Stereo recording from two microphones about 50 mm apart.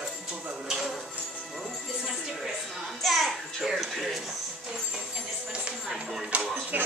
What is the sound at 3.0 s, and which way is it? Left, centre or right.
A child's voice, centre.